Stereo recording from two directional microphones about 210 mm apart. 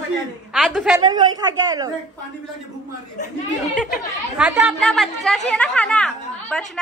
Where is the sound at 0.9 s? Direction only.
20° right (ahead or behind).